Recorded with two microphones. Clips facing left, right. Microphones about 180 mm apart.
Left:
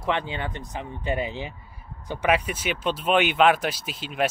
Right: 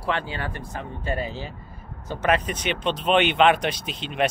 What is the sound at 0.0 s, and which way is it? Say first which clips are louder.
Speech: left 1 dB; 20° left (ahead or behind).